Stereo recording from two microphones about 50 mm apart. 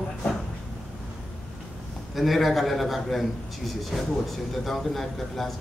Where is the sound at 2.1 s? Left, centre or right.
Centre.